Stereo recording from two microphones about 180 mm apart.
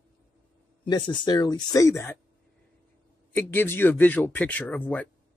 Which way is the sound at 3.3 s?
10° left (ahead or behind).